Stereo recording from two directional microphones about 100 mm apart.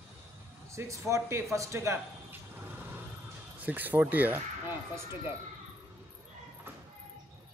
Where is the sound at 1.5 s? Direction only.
30° right (ahead or behind).